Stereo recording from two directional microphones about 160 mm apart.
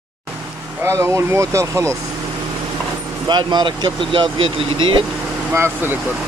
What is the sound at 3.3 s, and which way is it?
Speech, 25° right (ahead or behind).